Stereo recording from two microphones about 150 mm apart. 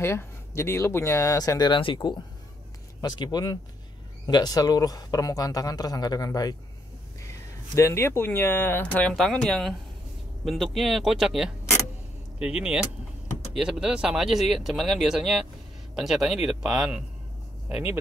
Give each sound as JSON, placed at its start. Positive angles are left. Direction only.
{"t": 0.0, "sound": "speech", "side_deg": 15}
{"t": 7.7, "sound": "speech", "side_deg": 20}